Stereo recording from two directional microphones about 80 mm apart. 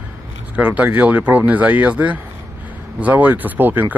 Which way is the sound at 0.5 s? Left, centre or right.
Centre.